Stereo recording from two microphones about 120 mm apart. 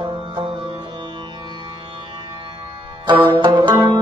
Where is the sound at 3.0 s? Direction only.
40° right (ahead or behind).